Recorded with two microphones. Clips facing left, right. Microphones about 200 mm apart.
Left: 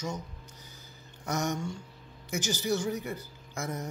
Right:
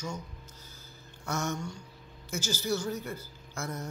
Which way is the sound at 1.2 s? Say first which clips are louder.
Left 2 dB; 15° left (ahead or behind).